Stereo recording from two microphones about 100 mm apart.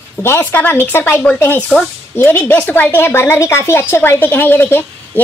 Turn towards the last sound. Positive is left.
turn(degrees=20)  # may be behind; listen again after turning